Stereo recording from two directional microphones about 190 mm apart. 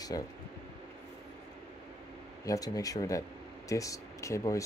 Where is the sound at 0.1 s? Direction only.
20° left (ahead or behind).